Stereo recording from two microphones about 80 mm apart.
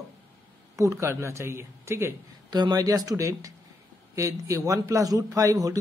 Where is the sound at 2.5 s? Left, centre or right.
Right.